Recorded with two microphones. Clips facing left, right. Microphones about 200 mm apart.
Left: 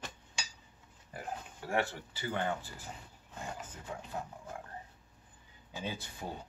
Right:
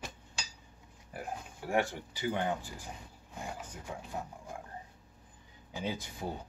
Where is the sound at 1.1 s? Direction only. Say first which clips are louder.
Right 1 dB; 10° right (ahead or behind).